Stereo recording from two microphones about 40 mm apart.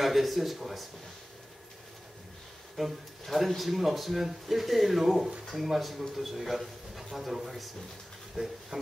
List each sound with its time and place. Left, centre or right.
0.0 s a man's voice: centre
2.8 s a man's voice: centre
8.4 s hiss: centre